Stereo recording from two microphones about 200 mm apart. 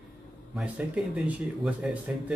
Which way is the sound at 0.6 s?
5° right (ahead or behind).